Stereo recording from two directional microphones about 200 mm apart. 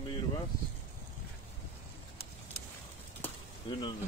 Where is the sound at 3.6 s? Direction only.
25° left (ahead or behind).